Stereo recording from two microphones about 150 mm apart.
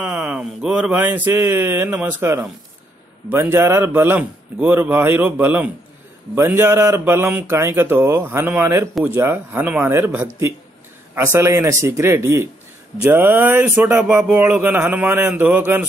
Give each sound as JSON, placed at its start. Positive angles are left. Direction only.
{"t": 0.0, "sound": "speech", "side_deg": -10}